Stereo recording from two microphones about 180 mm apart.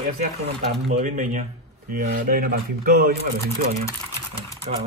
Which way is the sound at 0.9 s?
40° right (ahead or behind).